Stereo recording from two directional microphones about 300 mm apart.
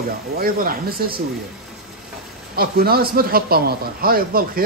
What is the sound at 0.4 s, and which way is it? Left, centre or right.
Speech, right.